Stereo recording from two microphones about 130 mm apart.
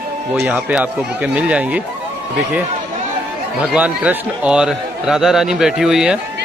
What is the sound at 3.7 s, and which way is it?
A man's voice, 10° right (ahead or behind).